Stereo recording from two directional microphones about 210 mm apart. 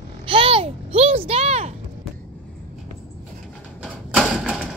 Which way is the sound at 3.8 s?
Centre (ahead or behind).